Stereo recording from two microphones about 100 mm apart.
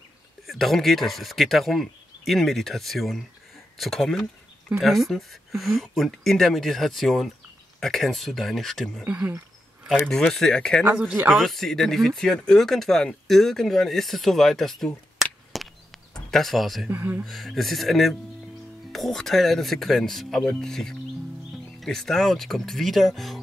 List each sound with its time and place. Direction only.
0.5 s speech: centre (ahead or behind)
9.0 s speech: 10° right (ahead or behind)
10.0 s speech: 5° left (ahead or behind)
10.8 s speech: 10° right (ahead or behind)
11.2 s speech: centre (ahead or behind)
16.9 s speech: 20° right (ahead or behind)
17.2 s speech: centre (ahead or behind)